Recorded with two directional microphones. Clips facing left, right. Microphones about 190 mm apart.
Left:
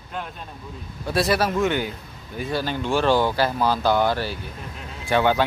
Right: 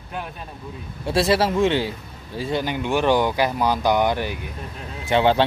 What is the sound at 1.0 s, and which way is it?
Speech, 25° right (ahead or behind).